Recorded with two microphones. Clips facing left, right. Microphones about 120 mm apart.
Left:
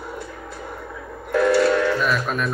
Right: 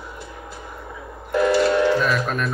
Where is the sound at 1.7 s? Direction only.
20° right (ahead or behind).